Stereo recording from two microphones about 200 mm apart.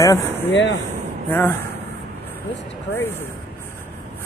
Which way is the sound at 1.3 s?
10° left (ahead or behind).